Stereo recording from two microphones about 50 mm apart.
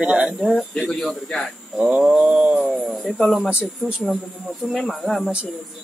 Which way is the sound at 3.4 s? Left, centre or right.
Right.